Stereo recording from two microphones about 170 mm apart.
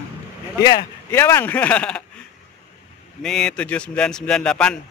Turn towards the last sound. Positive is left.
turn(degrees=5)  # may be behind; listen again after turning